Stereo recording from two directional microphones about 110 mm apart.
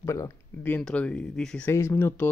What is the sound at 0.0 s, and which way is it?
Speech, 25° left (ahead or behind).